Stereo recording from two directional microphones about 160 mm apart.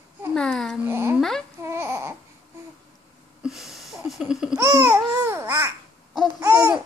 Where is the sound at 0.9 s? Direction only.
15° right (ahead or behind).